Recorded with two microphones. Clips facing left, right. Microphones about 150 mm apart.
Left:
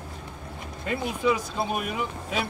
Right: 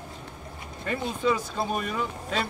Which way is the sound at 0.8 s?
15° left (ahead or behind).